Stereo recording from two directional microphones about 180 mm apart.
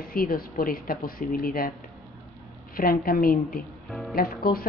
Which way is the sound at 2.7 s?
55° left (ahead or behind).